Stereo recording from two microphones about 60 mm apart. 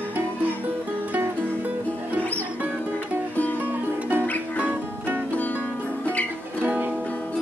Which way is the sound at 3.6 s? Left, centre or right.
Right.